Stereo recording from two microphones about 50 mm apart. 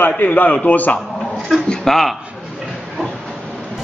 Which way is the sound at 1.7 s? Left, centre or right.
Centre.